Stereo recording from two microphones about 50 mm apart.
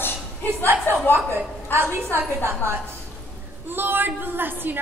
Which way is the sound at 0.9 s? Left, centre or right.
Left.